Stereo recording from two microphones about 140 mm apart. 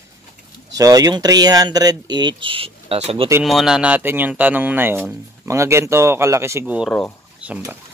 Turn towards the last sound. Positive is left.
turn(degrees=-10)  # may be behind; listen again after turning